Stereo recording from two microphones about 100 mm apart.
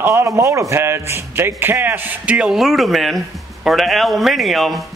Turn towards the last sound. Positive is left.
turn(degrees=0)  # may be behind; listen again after turning